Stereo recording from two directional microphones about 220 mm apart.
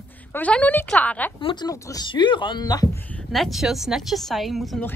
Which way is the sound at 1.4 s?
20° left (ahead or behind).